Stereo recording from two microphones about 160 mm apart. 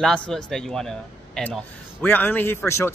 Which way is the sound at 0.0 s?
Centre (ahead or behind).